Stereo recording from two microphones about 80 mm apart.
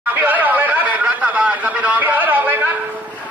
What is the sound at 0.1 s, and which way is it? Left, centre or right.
Chatter, right.